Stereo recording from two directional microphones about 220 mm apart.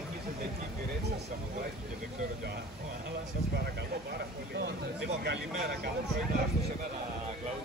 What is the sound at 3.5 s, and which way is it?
Speech, 45° right (ahead or behind).